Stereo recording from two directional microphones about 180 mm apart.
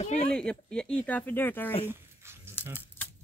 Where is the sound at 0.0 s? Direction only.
40° left (ahead or behind).